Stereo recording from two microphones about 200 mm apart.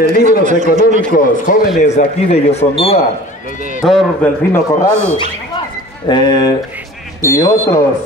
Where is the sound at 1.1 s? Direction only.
40° left (ahead or behind).